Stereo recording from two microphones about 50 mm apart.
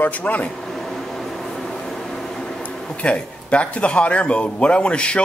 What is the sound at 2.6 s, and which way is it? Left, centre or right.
Speech, left.